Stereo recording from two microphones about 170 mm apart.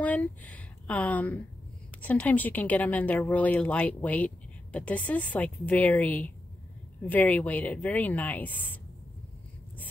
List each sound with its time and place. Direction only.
0.0 s speech: 10° left (ahead or behind)